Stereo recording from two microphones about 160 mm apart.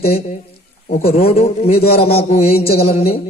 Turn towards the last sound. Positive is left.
turn(degrees=40)  # may be behind; listen again after turning